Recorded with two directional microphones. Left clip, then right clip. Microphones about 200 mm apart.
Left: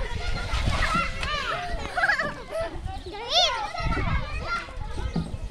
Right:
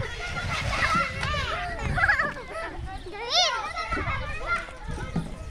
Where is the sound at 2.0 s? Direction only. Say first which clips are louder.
Right 1 dB; 45° left (ahead or behind).